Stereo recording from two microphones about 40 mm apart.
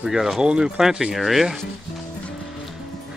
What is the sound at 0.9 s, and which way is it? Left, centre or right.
Speech, centre.